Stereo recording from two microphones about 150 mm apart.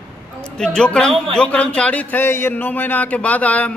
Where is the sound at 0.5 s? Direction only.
5° left (ahead or behind).